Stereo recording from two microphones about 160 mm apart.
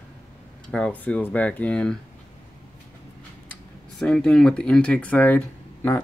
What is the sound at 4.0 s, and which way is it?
Speech, 5° left (ahead or behind).